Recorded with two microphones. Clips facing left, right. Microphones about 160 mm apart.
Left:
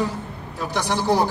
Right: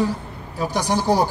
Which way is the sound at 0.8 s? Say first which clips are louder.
Right 1 dB; 10° right (ahead or behind).